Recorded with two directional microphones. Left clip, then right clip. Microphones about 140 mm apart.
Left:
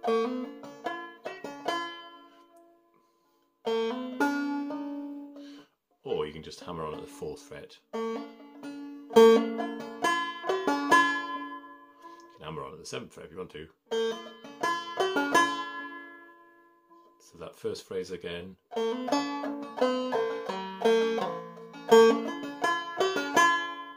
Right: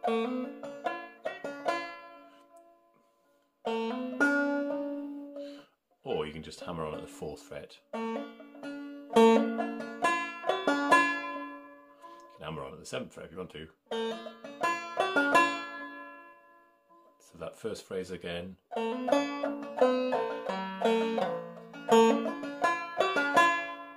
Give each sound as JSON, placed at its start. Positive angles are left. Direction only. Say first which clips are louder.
{"t": 0.0, "sound": "banjo", "louder": "left 3 dB", "side_deg": 35}
{"t": 3.6, "sound": "music", "louder": "left 3 dB", "side_deg": 35}
{"t": 5.4, "sound": "music", "louder": "right 5 dB", "side_deg": 10}
{"t": 7.9, "sound": "banjo", "louder": "left 2 dB", "side_deg": 35}
{"t": 10.9, "sound": "music", "louder": "left 3 dB", "side_deg": 35}
{"t": 12.4, "sound": "speech", "louder": "left 1 dB", "side_deg": 15}
{"t": 13.8, "sound": "banjo", "louder": "left 4 dB", "side_deg": 35}
{"t": 17.4, "sound": "speech", "louder": "left 2 dB", "side_deg": 15}
{"t": 18.7, "sound": "banjo", "louder": "even", "side_deg": 35}